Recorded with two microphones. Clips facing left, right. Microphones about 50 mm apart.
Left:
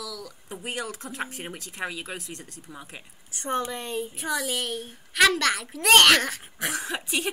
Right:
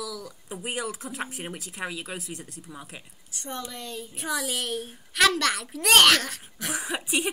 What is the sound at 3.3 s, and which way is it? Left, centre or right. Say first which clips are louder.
Speech: left 7 dB; left.